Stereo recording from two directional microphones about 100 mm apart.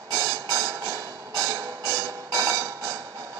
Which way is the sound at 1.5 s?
40° right (ahead or behind).